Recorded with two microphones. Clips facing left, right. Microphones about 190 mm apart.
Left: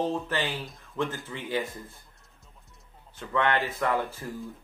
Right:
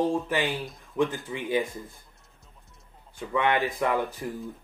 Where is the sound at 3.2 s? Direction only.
15° right (ahead or behind).